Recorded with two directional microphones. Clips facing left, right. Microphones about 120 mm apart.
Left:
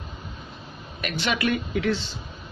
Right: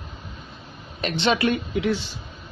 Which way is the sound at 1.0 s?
25° right (ahead or behind).